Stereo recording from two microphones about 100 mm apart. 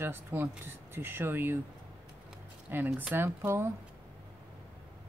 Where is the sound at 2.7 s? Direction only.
20° right (ahead or behind).